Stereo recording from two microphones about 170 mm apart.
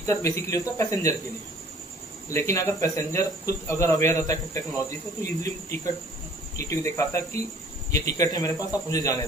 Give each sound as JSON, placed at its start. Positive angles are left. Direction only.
{"t": 0.0, "sound": "speech", "side_deg": 15}
{"t": 2.3, "sound": "a man's voice", "side_deg": 15}